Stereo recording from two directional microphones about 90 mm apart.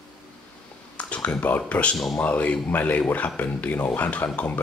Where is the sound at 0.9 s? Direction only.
15° left (ahead or behind).